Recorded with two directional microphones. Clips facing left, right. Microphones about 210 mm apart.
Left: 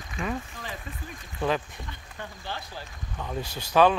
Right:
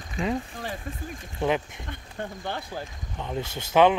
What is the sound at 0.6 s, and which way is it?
Speech, 20° right (ahead or behind).